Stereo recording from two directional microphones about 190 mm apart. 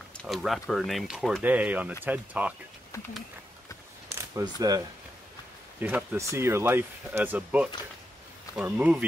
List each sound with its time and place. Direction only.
0.2 s speech: centre (ahead or behind)
4.1 s speech: 15° right (ahead or behind)
5.8 s speech: 10° right (ahead or behind)